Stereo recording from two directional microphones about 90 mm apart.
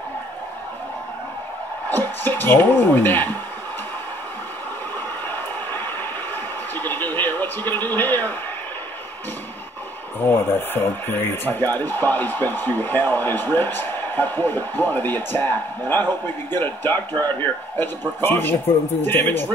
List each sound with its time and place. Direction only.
1.9 s speech: 20° left (ahead or behind)
6.7 s television: 20° left (ahead or behind)
10.2 s speech: 25° left (ahead or behind)